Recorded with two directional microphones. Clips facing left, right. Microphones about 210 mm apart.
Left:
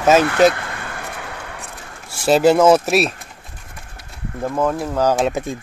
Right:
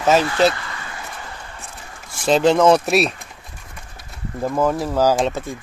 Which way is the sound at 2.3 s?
5° left (ahead or behind).